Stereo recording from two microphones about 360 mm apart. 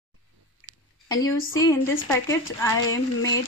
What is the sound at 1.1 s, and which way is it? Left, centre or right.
A woman's voice, centre.